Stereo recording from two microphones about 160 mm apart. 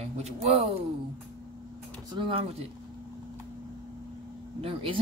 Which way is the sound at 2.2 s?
35° right (ahead or behind).